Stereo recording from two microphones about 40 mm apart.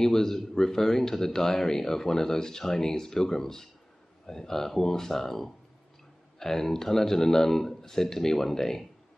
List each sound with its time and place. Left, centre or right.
0.0 s speech: centre